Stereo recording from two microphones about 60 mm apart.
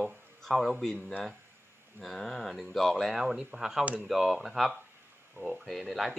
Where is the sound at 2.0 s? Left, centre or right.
Centre.